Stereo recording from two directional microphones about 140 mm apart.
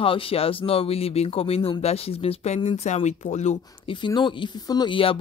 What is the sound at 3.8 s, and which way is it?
A woman's voice, 35° left (ahead or behind).